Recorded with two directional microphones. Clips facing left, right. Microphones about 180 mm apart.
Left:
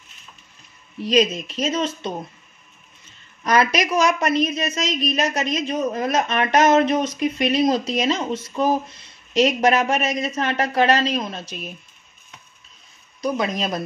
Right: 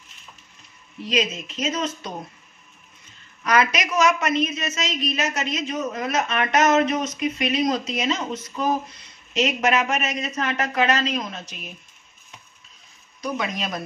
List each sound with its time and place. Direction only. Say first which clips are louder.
1.0 s a woman's voice: left 6 dB; 35° left (ahead or behind)
3.4 s a woman's voice: left 2 dB; 35° left (ahead or behind)
13.2 s a woman's voice: left 5 dB; 35° left (ahead or behind)